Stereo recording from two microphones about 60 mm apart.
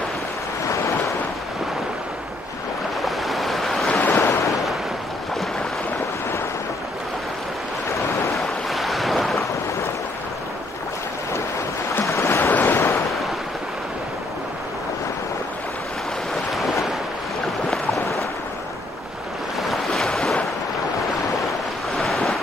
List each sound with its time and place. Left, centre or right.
3.1 s waves: centre
4.0 s waves: left
8.4 s waves: centre
12.2 s waves: left
19.6 s waves: centre
21.9 s waves: centre